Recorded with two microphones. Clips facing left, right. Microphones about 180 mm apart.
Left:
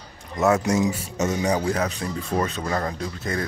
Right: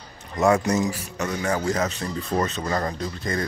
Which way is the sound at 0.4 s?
5° left (ahead or behind).